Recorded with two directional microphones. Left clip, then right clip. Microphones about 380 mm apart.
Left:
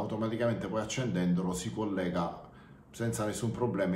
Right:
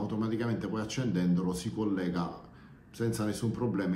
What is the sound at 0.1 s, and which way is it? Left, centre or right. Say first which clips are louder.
Speech: left 4 dB; centre.